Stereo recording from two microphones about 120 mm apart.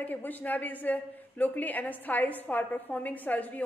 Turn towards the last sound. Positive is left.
turn(degrees=15)  # may be behind; listen again after turning